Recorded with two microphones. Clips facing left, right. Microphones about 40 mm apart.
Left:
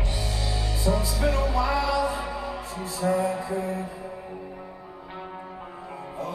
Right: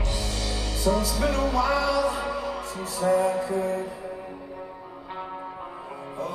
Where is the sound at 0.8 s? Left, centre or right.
Centre.